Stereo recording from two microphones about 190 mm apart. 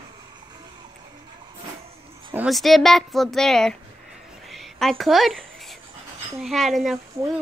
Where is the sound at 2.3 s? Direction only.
Centre (ahead or behind).